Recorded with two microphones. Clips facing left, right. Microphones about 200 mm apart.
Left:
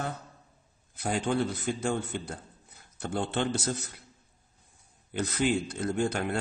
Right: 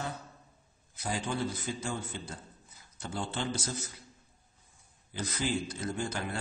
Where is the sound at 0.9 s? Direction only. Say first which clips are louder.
Left 6 dB; 60° left (ahead or behind).